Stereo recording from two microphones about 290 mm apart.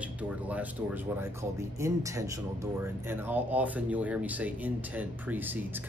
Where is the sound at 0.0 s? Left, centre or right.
Centre.